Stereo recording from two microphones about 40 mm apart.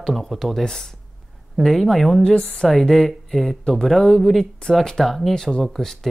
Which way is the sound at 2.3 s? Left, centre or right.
Left.